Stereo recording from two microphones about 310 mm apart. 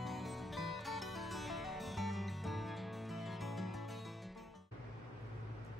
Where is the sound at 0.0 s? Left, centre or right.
Centre.